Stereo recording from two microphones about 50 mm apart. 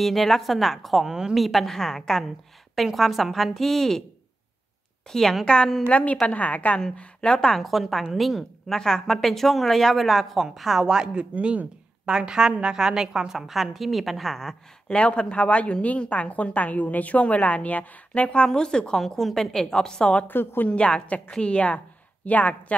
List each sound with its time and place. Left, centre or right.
0.0 s a woman's voice: centre
5.1 s a woman's voice: centre; by 6.8 s left
7.0 s a woman's voice: centre
11.3 s speech: right
12.1 s a woman's voice: centre
14.9 s a woman's voice: left
18.9 s a woman's voice: centre
20.2 s a woman's voice: left
20.6 s a woman's voice: left